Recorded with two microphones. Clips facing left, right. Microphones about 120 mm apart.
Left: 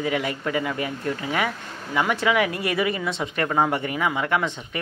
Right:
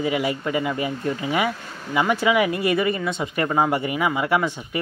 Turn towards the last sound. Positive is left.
turn(degrees=-5)  # may be behind; listen again after turning